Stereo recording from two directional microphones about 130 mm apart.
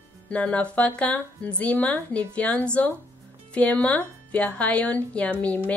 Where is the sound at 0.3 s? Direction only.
10° left (ahead or behind).